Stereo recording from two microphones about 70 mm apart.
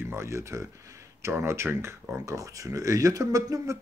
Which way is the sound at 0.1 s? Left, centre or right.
Right.